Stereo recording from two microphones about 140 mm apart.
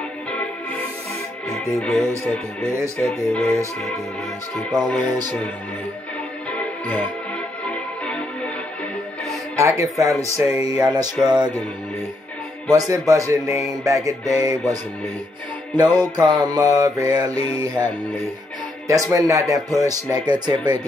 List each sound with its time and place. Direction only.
1.5 s music: centre (ahead or behind)
4.8 s speech: 15° left (ahead or behind)
7.6 s music: 10° left (ahead or behind)
9.6 s speech: 20° right (ahead or behind)
11.2 s music: 30° right (ahead or behind)
12.6 s speech: 25° right (ahead or behind)
15.7 s music: 30° right (ahead or behind)
16.2 s speech: 30° right (ahead or behind)
18.9 s speech: 25° right (ahead or behind)